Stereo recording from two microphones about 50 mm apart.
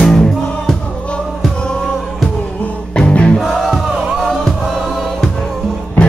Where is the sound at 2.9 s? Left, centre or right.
Left.